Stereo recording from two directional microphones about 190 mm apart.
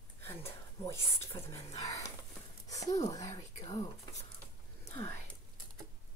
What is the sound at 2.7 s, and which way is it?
Speech, 15° left (ahead or behind).